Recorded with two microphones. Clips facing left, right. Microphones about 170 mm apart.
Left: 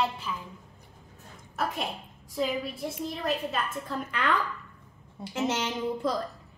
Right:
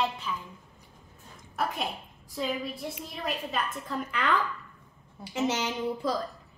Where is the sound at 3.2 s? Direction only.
Centre (ahead or behind).